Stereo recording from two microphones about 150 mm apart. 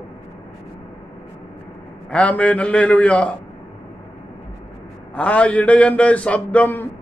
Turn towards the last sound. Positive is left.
turn(degrees=10)  # may be behind; listen again after turning